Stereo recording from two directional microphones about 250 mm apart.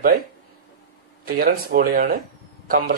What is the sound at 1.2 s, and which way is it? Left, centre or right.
Speech, right.